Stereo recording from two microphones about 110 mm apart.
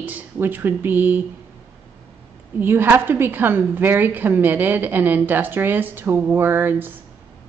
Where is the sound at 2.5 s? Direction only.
20° right (ahead or behind).